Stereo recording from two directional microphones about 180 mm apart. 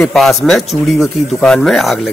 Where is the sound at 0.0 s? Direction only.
Centre (ahead or behind).